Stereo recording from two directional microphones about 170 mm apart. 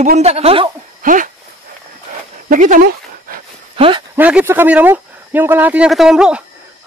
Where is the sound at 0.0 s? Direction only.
40° right (ahead or behind).